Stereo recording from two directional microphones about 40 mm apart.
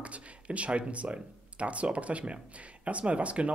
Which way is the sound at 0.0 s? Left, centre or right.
Right.